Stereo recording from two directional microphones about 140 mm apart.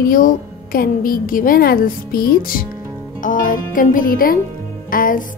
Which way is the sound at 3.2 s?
70° left (ahead or behind).